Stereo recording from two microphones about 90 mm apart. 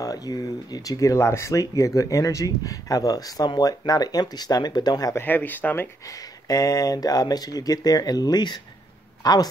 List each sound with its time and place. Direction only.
0.0 s speech: 45° left (ahead or behind)
5.1 s speech: 20° left (ahead or behind)
6.4 s speech: 40° left (ahead or behind)